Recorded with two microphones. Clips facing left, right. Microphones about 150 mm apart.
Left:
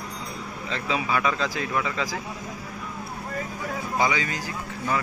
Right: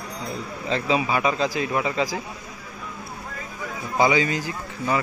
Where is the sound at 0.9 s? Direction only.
20° right (ahead or behind).